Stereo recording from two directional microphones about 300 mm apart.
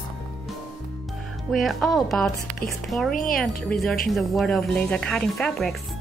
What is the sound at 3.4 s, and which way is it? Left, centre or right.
Speech, centre.